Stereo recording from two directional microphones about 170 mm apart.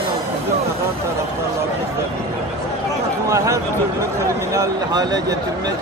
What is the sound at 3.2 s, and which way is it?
Speech, 20° right (ahead or behind).